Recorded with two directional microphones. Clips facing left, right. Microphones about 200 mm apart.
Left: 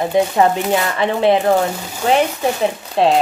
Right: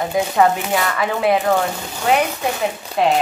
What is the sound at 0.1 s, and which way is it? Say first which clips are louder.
A woman's voice: left 2 dB; 25° left (ahead or behind).